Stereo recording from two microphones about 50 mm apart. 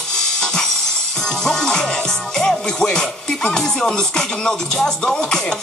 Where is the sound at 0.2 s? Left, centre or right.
Centre.